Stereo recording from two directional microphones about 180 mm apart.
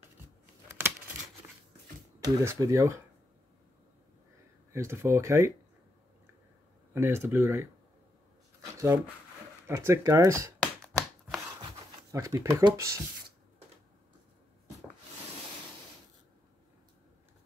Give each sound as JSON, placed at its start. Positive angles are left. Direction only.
{"t": 0.7, "sound": "a sound", "side_deg": -10}
{"t": 2.1, "sound": "speech", "side_deg": -15}
{"t": 4.7, "sound": "speech", "side_deg": -15}
{"t": 6.9, "sound": "speech", "side_deg": -15}
{"t": 8.7, "sound": "speech", "side_deg": -15}
{"t": 10.6, "sound": "a sound", "side_deg": 5}
{"t": 12.1, "sound": "speech", "side_deg": -15}